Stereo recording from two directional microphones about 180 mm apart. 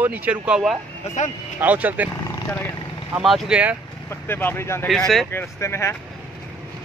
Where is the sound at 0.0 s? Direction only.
10° right (ahead or behind).